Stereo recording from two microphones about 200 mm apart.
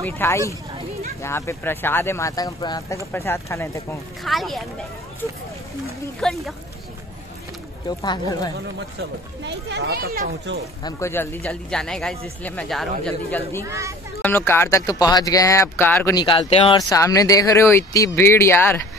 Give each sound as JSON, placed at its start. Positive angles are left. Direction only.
{"t": 0.0, "sound": "speech", "side_deg": 10}
{"t": 4.2, "sound": "speech", "side_deg": 0}
{"t": 6.2, "sound": "speech", "side_deg": 5}
{"t": 8.0, "sound": "speech", "side_deg": 20}
{"t": 9.4, "sound": "speech", "side_deg": -60}
{"t": 10.8, "sound": "speech", "side_deg": 15}
{"t": 13.7, "sound": "speech", "side_deg": -15}
{"t": 14.2, "sound": "speech", "side_deg": 10}
{"t": 16.2, "sound": "speech", "side_deg": 25}
{"t": 16.7, "sound": "speech", "side_deg": 15}